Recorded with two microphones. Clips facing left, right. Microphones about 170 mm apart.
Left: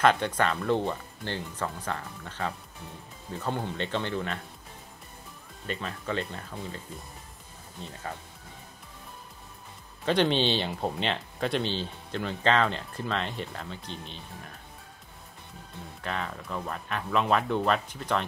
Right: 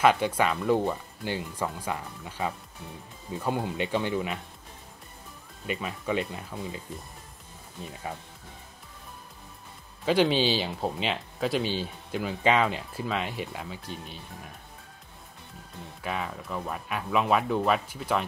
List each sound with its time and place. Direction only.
0.0 s speech: 10° right (ahead or behind)
5.7 s speech: 10° right (ahead or behind)
10.0 s speech: 5° right (ahead or behind)
16.0 s speech: 5° right (ahead or behind)